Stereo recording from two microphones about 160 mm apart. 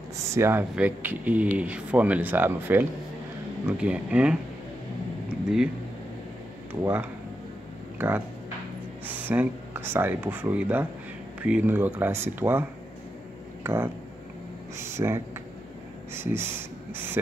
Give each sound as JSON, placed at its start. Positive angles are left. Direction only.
{"t": 0.3, "sound": "speech", "side_deg": -15}
{"t": 6.7, "sound": "speech", "side_deg": -10}
{"t": 14.8, "sound": "speech", "side_deg": -15}
{"t": 16.1, "sound": "a sound", "side_deg": -15}